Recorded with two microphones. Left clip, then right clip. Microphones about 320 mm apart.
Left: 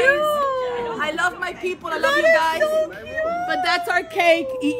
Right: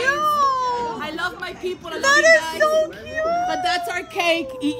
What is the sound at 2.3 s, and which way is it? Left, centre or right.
Speech, centre.